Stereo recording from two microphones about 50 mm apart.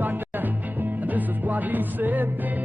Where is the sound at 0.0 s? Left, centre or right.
Right.